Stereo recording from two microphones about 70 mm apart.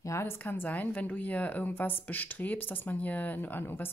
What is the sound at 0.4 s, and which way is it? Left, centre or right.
A woman's voice, left.